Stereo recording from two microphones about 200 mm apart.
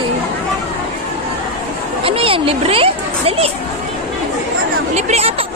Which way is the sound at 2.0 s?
25° right (ahead or behind).